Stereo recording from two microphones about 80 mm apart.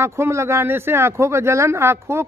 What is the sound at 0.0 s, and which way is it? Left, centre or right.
A woman's voice, right.